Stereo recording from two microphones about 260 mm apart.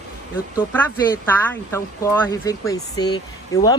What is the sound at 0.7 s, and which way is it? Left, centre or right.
Speech, centre.